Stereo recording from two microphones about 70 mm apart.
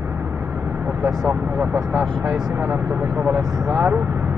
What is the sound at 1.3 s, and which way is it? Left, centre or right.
Speech, right.